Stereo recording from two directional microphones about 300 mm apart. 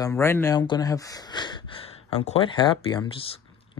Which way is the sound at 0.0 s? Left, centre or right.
Centre.